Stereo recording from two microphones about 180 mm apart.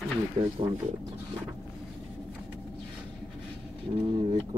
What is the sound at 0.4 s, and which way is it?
Speech, 35° right (ahead or behind).